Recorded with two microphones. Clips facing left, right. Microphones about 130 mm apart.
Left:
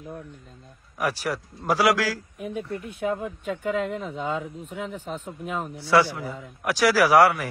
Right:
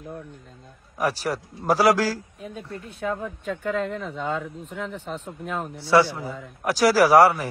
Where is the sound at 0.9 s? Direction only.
30° right (ahead or behind).